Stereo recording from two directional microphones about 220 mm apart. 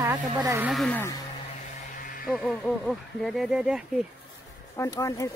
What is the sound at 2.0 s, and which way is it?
Music, 40° left (ahead or behind).